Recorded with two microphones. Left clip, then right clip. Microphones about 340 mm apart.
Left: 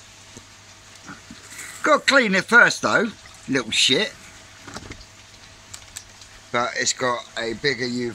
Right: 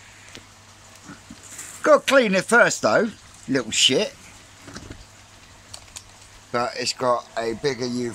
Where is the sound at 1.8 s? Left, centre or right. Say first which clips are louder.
Right 1 dB; centre.